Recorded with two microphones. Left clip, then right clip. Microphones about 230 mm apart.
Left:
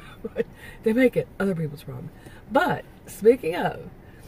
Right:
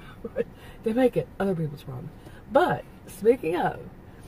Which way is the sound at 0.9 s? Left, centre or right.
Centre.